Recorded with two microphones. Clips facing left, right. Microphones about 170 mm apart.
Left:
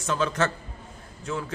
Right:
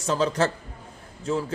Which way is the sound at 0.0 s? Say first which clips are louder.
Right 2 dB; 35° right (ahead or behind).